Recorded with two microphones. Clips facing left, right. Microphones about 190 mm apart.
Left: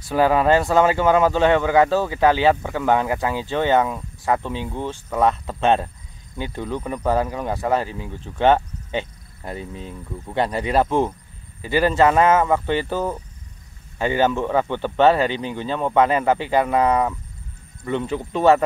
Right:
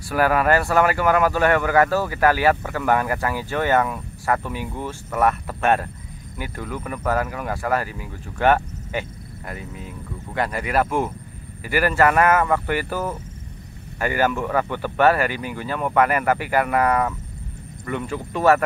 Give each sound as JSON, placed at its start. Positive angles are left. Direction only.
{"t": 0.1, "sound": "speech", "side_deg": 20}